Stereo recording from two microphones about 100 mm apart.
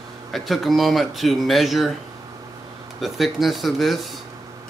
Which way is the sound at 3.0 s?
Centre (ahead or behind).